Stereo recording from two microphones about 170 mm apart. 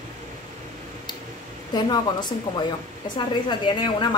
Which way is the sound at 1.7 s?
25° left (ahead or behind).